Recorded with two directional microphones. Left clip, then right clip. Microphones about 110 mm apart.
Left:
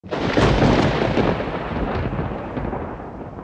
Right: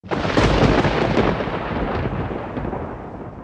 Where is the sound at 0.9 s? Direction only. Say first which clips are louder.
Right 1 dB; centre (ahead or behind).